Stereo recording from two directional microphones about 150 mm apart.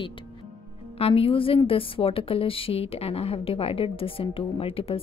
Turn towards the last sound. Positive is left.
turn(degrees=40)  # may be behind; listen again after turning